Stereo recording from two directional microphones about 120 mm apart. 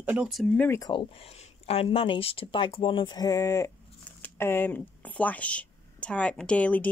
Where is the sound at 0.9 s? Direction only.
50° left (ahead or behind).